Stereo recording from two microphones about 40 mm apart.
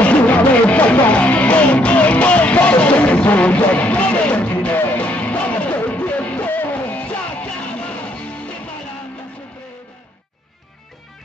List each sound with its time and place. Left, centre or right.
0.0 s music: left
6.4 s music: left